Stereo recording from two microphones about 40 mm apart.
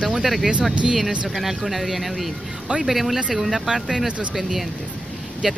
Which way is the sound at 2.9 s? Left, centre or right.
Centre.